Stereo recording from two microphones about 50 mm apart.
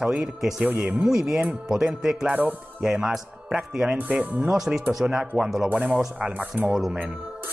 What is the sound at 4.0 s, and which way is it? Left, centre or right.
Speech, right.